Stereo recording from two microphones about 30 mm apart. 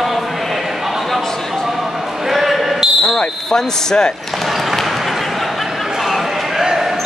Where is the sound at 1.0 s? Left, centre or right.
Centre.